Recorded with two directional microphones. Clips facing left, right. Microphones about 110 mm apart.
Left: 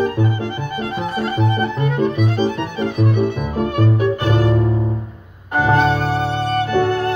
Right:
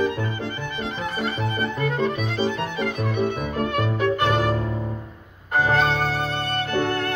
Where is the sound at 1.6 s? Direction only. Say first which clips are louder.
Left 5 dB; 15° left (ahead or behind).